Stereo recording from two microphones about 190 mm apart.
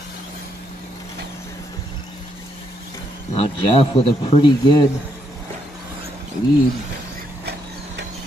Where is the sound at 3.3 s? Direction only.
30° left (ahead or behind).